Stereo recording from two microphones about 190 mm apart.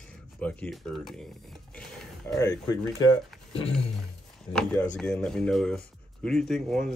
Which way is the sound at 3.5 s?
30° left (ahead or behind).